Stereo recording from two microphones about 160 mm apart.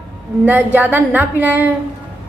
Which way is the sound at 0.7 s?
10° right (ahead or behind).